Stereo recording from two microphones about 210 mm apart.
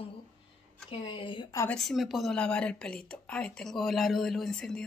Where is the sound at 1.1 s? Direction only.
25° left (ahead or behind).